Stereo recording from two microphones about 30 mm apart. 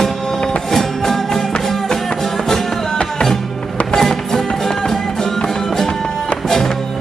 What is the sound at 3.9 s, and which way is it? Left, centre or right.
Music, centre.